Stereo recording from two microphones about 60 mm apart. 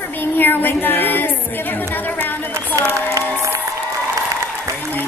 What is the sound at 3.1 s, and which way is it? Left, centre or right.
Music, right.